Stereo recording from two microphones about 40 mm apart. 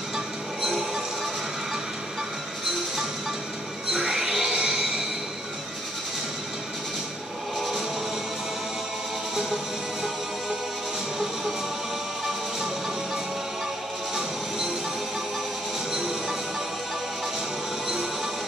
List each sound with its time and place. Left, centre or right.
0.7 s music: centre
3.9 s music: centre
9.3 s music: centre
15.9 s music: centre